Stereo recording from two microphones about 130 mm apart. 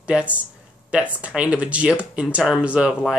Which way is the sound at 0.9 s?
10° right (ahead or behind).